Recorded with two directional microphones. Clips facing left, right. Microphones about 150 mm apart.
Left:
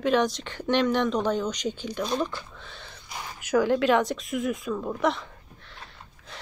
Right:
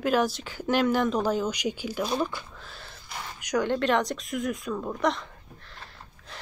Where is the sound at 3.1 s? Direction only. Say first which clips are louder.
Left 4 dB; 10° left (ahead or behind).